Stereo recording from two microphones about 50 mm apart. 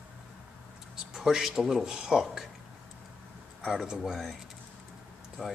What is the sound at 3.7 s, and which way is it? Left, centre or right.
Speech, centre.